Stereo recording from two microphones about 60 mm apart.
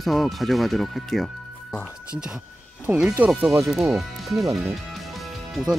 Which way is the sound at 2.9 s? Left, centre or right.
Right.